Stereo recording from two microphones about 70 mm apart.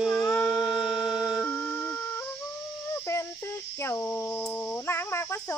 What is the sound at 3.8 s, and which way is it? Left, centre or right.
Speech, left.